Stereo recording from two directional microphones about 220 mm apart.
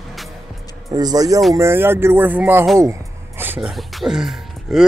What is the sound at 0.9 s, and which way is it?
Speech, 15° right (ahead or behind).